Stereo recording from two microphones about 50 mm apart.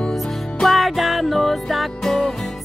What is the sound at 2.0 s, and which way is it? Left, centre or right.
Music, centre.